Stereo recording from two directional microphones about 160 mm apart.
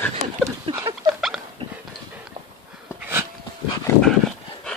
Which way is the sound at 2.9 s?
10° right (ahead or behind).